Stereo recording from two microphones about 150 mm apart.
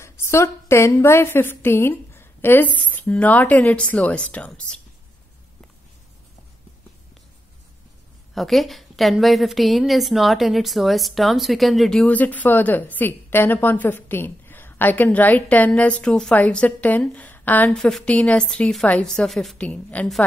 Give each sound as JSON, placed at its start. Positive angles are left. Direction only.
{"t": 0.0, "sound": "a woman's voice", "side_deg": 20}
{"t": 8.4, "sound": "a woman's voice", "side_deg": 0}